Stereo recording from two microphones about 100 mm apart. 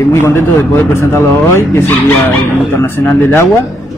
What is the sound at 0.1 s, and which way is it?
A man's voice, 25° left (ahead or behind).